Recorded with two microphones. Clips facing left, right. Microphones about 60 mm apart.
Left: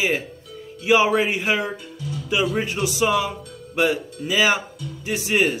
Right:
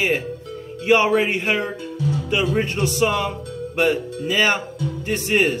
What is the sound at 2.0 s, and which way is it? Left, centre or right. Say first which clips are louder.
Music: right 8 dB; right.